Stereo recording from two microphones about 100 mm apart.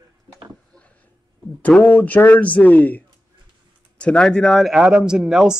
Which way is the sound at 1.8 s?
15° left (ahead or behind).